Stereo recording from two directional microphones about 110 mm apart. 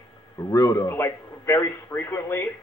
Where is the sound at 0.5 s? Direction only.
25° left (ahead or behind).